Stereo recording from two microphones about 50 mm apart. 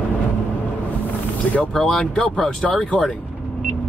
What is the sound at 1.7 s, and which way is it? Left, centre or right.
Speech, centre.